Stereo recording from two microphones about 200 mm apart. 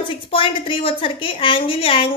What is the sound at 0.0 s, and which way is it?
A woman's voice, 25° left (ahead or behind).